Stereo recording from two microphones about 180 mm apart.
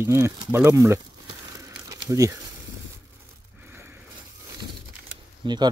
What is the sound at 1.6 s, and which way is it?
Crumpling, 20° right (ahead or behind).